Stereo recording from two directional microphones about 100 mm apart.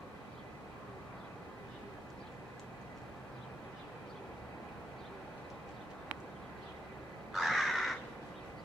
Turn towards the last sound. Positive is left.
turn(degrees=0)  # may be behind; listen again after turning